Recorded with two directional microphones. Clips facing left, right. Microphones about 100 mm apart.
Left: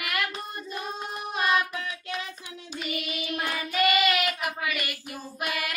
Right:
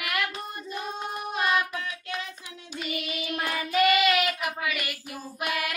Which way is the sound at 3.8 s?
5° left (ahead or behind).